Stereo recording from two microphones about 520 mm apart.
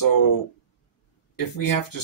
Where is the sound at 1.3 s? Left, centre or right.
Left.